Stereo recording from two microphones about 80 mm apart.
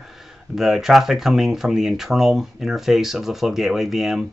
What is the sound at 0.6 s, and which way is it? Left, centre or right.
Speech, centre.